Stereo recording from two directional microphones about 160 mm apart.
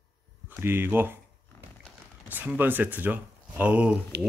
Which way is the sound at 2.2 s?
10° right (ahead or behind).